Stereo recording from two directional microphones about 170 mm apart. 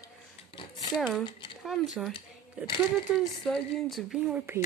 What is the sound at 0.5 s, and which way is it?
Speech, 30° left (ahead or behind).